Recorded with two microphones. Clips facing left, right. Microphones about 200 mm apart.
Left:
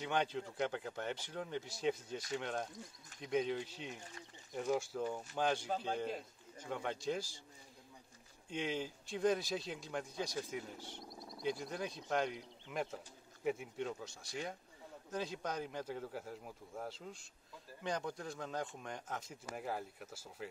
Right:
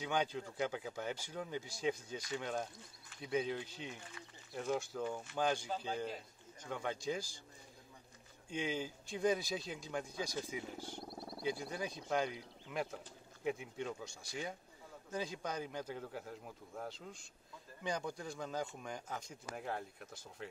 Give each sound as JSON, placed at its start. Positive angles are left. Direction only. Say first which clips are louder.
{"t": 0.0, "sound": "speech", "louder": "even", "side_deg": 0}
{"t": 3.9, "sound": "speech", "louder": "left 1 dB", "side_deg": 40}
{"t": 4.6, "sound": "speech", "louder": "left 1 dB", "side_deg": 5}
{"t": 8.5, "sound": "speech", "louder": "even", "side_deg": 0}